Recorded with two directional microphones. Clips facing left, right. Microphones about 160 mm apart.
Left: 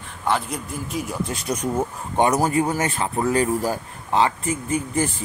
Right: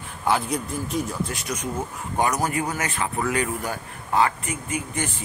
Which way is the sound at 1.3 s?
35° left (ahead or behind).